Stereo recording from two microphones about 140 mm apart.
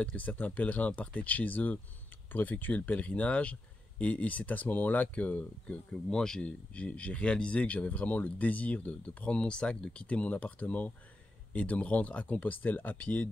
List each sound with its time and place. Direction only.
0.0 s speech: 10° left (ahead or behind)